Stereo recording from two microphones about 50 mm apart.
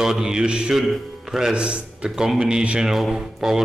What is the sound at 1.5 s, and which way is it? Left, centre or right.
Speech, right.